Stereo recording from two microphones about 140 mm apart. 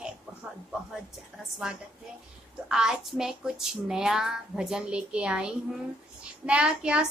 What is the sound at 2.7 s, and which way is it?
A woman's voice, 5° right (ahead or behind).